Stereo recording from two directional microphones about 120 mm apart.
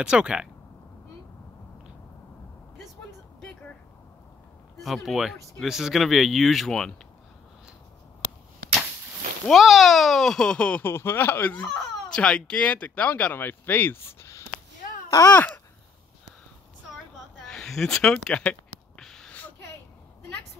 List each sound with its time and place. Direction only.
0.0 s speech: 10° right (ahead or behind)
4.7 s speech: centre (ahead or behind)
9.5 s speech: centre (ahead or behind); by 15.3 s 30° left (ahead or behind)
15.3 s speech: 15° left (ahead or behind)
17.5 s a sound: 5° left (ahead or behind)